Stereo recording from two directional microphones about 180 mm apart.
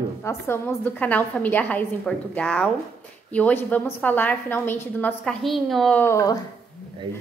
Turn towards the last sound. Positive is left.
turn(degrees=20)  # may be behind; listen again after turning